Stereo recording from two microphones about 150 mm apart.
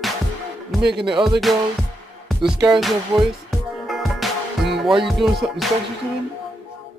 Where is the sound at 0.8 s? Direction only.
90° right.